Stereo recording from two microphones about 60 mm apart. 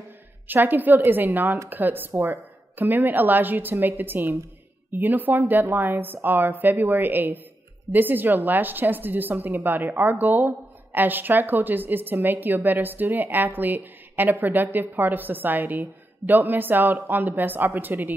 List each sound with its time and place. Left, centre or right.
0.5 s a woman's voice: right